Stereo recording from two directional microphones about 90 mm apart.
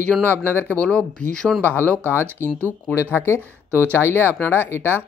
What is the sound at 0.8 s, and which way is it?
Speech, 10° left (ahead or behind).